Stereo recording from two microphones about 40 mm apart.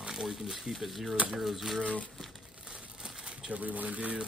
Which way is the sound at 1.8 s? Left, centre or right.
Left.